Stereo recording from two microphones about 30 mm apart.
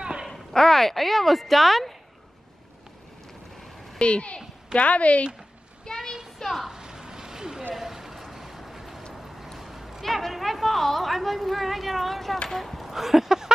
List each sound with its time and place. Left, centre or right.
0.6 s a woman's voice: centre
4.0 s a woman's voice: left
5.9 s a child's voice: centre
6.7 s a sound: right; by 9.0 s centre
9.1 s vehicle: centre
9.6 s a sound: centre
10.0 s a woman's voice: centre